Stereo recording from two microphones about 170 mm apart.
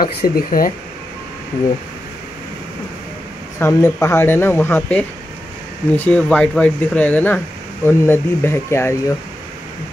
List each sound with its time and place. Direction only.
0.0 s speech: 60° left (ahead or behind)
3.5 s speech: 15° left (ahead or behind)